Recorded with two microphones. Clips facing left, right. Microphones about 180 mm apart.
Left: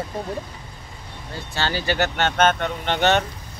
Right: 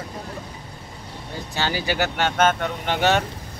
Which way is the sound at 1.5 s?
10° right (ahead or behind).